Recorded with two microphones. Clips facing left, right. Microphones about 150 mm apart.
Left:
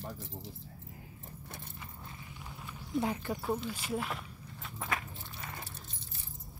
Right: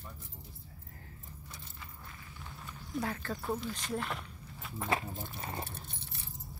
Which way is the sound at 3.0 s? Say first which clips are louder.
Left 1 dB; 15° left (ahead or behind).